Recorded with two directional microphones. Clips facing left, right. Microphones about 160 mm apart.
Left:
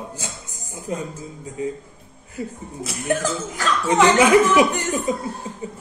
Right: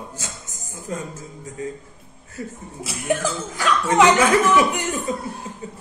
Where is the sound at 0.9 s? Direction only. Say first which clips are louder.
Left 2 dB; 15° left (ahead or behind).